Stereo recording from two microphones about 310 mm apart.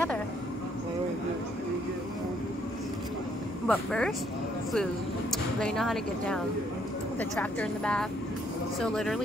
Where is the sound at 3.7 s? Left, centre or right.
Centre.